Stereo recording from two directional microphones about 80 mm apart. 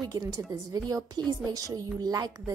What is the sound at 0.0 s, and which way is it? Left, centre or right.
A woman's voice, right.